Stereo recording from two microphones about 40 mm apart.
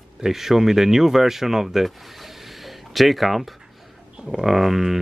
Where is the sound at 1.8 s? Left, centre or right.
Centre.